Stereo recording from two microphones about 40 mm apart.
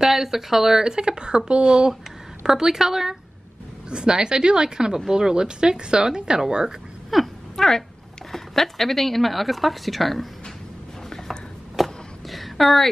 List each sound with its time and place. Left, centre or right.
0.0 s a woman's voice: centre
3.9 s a woman's voice: right
7.1 s speech: centre
7.5 s speech: centre
11.7 s vehicle: centre